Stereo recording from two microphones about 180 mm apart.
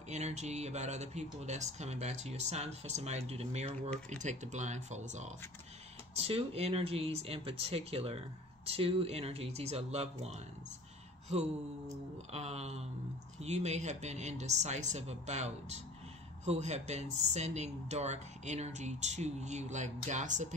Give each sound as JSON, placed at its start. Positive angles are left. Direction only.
{"t": 0.1, "sound": "speech", "side_deg": -40}